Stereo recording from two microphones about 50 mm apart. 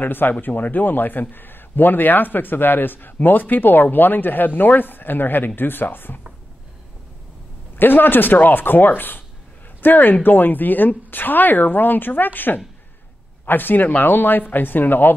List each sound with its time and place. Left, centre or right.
0.0 s a man's voice: left
7.7 s a man's voice: left